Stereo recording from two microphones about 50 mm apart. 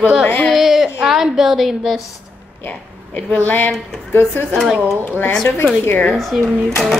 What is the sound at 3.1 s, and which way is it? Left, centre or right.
Speech, left.